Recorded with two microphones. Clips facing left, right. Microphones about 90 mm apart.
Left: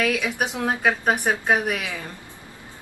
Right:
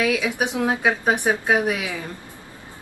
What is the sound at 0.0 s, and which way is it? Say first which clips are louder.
Speech: right 2 dB; 5° right (ahead or behind).